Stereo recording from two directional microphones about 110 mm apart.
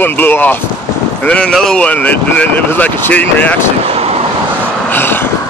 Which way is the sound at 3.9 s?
70° right (ahead or behind).